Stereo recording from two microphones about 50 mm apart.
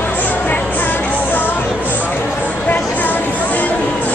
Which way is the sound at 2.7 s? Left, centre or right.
Left.